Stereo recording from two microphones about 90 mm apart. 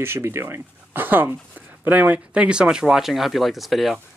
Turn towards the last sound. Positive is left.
turn(degrees=0)  # may be behind; listen again after turning